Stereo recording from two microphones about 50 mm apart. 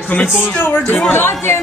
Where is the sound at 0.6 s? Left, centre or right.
Left.